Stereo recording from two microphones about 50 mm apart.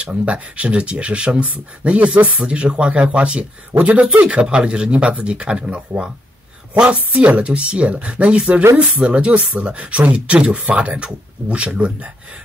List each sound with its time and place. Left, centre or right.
0.0 s speech: right